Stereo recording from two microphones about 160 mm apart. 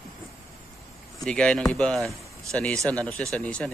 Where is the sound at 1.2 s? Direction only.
5° left (ahead or behind).